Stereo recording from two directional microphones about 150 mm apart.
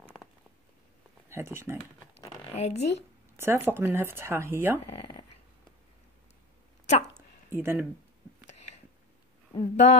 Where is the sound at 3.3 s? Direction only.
15° right (ahead or behind).